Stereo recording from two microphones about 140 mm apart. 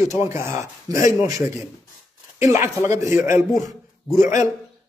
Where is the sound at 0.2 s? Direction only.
20° right (ahead or behind).